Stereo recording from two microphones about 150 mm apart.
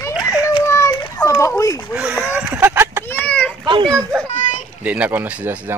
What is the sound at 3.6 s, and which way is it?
Speech, 30° right (ahead or behind).